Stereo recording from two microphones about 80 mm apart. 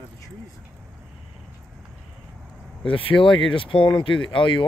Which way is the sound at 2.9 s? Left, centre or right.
Left.